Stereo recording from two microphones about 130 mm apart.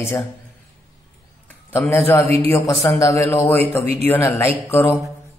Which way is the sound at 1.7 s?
20° left (ahead or behind).